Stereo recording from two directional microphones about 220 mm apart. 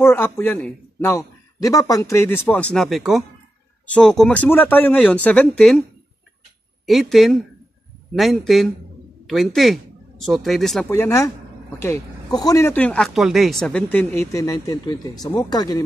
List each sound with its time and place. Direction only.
0.0 s speech: 10° left (ahead or behind)
6.9 s speech: centre (ahead or behind); by 15.8 s 20° left (ahead or behind)